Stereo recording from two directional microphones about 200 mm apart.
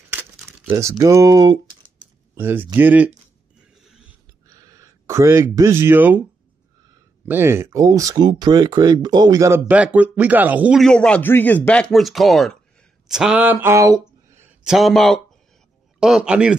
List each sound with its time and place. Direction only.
0.1 s crumpling: 10° right (ahead or behind)
2.3 s speech: 10° right (ahead or behind)
4.5 s speech: 15° right (ahead or behind)
7.2 s a man's voice: 10° right (ahead or behind)